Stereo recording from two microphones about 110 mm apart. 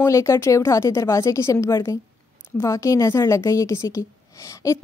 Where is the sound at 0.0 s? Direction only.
30° left (ahead or behind).